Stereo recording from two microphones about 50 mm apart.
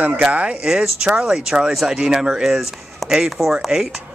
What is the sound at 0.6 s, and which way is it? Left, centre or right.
Speech, centre.